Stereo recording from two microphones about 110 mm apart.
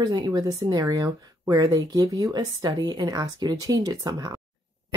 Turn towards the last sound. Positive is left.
turn(degrees=-35)  # may be behind; listen again after turning